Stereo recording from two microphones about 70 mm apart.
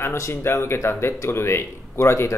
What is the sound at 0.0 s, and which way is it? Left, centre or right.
Speech, left.